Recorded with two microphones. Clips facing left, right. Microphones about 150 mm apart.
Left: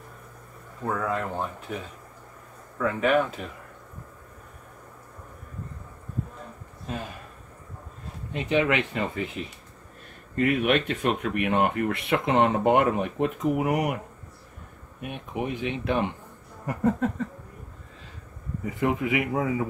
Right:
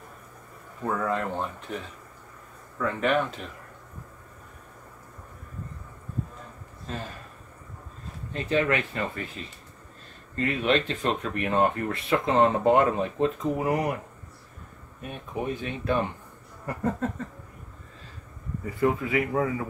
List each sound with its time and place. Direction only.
1.0 s speech: 5° left (ahead or behind)
2.8 s speech: 5° left (ahead or behind)
6.9 s speech: 10° left (ahead or behind)
8.3 s speech: 15° left (ahead or behind)
10.3 s speech: 10° left (ahead or behind)
15.0 s speech: 15° left (ahead or behind)
18.8 s speech: 20° left (ahead or behind)